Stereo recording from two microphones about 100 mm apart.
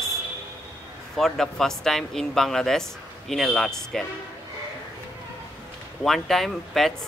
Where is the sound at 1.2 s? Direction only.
5° left (ahead or behind).